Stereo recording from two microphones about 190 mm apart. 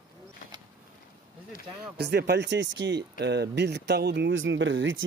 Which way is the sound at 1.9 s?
60° right (ahead or behind).